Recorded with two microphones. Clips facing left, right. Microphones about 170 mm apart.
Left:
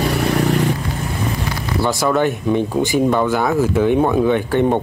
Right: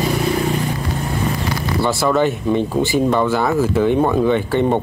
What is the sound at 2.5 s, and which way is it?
Speech, 15° left (ahead or behind).